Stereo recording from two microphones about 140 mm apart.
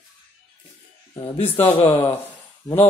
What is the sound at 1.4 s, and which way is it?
Speech, 40° left (ahead or behind).